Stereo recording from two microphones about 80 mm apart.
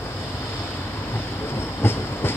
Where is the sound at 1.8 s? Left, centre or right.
Left.